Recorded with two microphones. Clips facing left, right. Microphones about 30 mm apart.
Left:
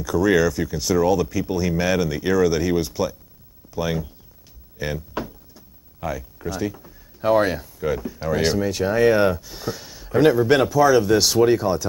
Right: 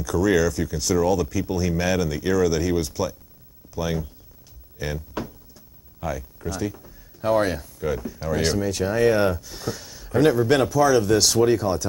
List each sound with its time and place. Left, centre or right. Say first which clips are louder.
0.0 s speech: left 2 dB; centre